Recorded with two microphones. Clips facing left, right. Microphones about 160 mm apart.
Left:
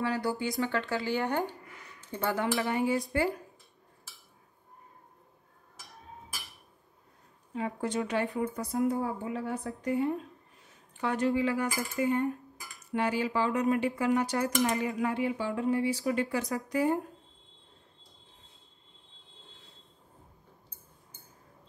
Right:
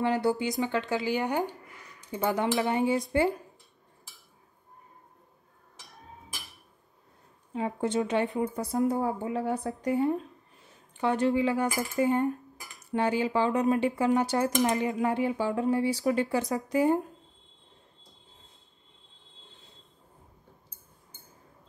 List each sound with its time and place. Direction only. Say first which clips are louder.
0.0 s speech: right 4 dB; 20° right (ahead or behind)
7.5 s speech: right 4 dB; 25° right (ahead or behind)
8.7 s a woman's voice: right 2 dB; 40° right (ahead or behind)
11.0 s speech: right 3 dB; 25° right (ahead or behind)